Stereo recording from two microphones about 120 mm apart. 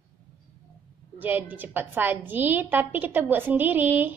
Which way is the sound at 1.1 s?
15° right (ahead or behind).